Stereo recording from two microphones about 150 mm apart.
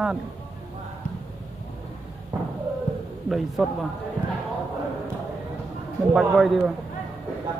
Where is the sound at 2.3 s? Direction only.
25° right (ahead or behind).